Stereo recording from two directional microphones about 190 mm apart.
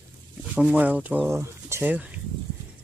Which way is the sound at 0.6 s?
10° right (ahead or behind).